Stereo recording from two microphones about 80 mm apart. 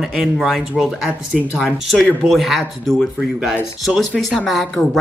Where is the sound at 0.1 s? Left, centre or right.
Centre.